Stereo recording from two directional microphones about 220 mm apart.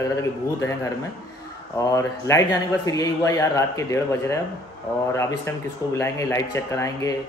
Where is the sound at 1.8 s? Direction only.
15° left (ahead or behind).